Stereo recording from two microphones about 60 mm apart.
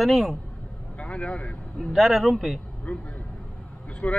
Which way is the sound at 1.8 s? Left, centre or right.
Centre.